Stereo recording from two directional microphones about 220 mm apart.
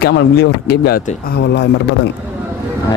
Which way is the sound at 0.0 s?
50° left (ahead or behind).